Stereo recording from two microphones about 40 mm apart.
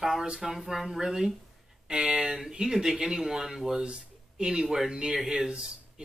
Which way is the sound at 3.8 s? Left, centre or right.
Right.